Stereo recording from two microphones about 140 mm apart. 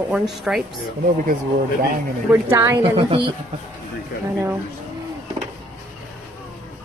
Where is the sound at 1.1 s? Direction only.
75° right (ahead or behind).